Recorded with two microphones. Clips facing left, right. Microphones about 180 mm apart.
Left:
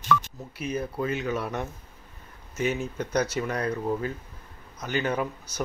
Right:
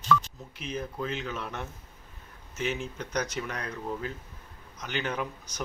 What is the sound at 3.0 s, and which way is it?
Speech, 10° left (ahead or behind).